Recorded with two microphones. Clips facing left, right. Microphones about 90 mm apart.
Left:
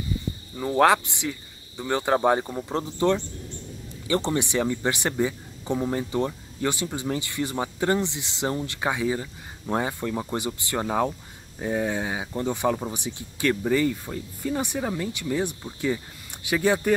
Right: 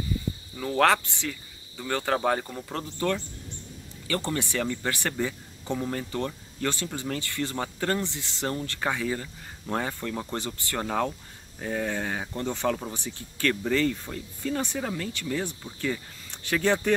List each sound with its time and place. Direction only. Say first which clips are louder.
0.6 s speech: left 3 dB; 15° left (ahead or behind)